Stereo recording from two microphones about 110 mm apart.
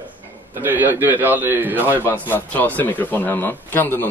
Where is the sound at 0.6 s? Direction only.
15° right (ahead or behind).